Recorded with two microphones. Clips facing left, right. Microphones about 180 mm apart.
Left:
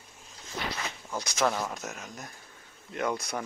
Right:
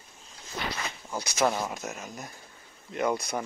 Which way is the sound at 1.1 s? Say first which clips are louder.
Right 2 dB; 10° right (ahead or behind).